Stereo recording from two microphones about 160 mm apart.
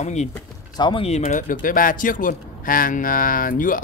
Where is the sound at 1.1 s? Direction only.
45° left (ahead or behind).